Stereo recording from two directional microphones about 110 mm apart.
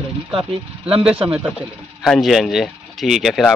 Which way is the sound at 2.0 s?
Centre (ahead or behind).